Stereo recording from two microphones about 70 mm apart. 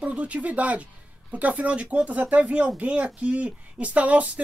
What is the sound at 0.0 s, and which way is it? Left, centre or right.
Speech, centre.